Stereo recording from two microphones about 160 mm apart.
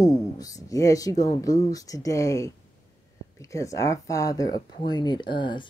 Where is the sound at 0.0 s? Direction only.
20° left (ahead or behind).